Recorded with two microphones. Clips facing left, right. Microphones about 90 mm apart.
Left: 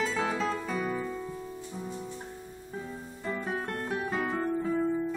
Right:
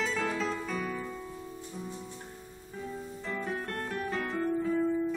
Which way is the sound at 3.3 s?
15° left (ahead or behind).